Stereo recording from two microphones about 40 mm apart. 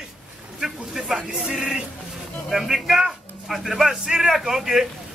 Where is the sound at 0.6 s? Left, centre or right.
Centre.